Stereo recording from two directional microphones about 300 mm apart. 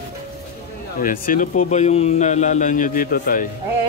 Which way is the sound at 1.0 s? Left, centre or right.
Left.